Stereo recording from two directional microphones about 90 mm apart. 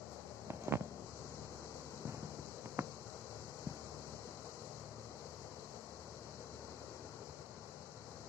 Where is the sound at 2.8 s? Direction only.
35° right (ahead or behind).